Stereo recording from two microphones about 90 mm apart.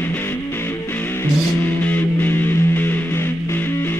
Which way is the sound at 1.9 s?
20° left (ahead or behind).